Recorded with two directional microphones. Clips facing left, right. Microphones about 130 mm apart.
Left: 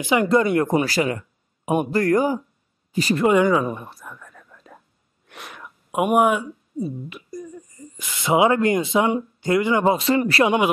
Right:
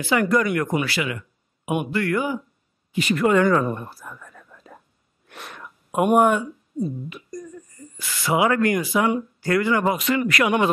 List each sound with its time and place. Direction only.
0.0 s a man's voice: 20° left (ahead or behind); by 3.3 s 35° left (ahead or behind)
3.3 s speech: 15° left (ahead or behind); by 10.5 s 30° left (ahead or behind)